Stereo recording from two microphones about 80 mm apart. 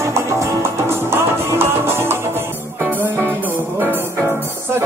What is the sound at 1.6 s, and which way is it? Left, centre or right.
Music, right.